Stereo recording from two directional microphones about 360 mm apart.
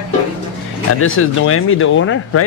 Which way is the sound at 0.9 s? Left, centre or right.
Left.